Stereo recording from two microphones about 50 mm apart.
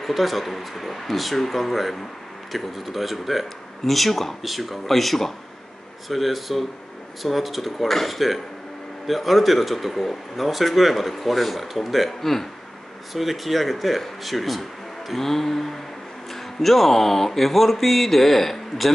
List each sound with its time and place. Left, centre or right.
0.0 s speech: centre